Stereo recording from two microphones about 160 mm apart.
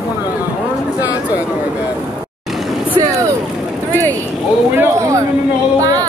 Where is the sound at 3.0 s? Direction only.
20° right (ahead or behind).